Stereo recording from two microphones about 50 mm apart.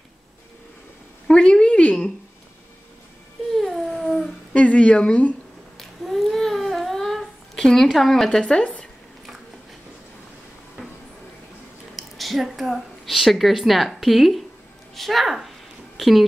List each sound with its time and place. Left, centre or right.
1.2 s a woman's voice: centre
3.4 s a sound: centre
4.6 s speech: left
5.8 s humming: centre
7.7 s a woman's voice: centre
11.9 s a woman's voice: centre